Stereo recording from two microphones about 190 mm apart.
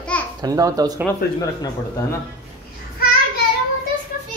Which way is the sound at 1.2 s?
55° left (ahead or behind).